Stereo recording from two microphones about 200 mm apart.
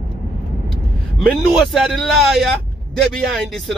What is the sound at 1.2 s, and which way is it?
Speech, centre (ahead or behind).